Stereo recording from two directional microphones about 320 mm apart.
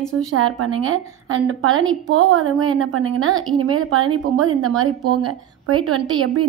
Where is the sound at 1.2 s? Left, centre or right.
Right.